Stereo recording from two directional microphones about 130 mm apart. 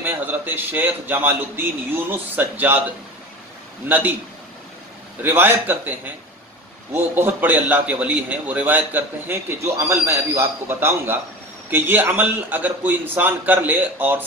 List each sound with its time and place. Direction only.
0.0 s a man's voice: 15° right (ahead or behind)
5.2 s a man's voice: 15° right (ahead or behind)